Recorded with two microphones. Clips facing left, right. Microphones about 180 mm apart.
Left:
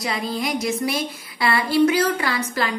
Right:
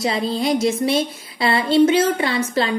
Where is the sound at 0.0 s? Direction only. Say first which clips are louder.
Right 5 dB; 25° right (ahead or behind).